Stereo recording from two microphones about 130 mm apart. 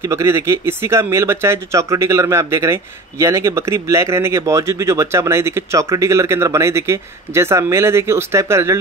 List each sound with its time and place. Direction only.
0.0 s speech: 20° right (ahead or behind)